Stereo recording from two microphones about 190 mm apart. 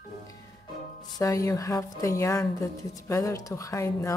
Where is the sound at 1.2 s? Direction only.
15° left (ahead or behind).